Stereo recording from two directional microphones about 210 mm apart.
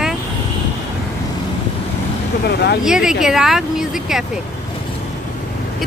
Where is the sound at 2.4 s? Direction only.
50° left (ahead or behind).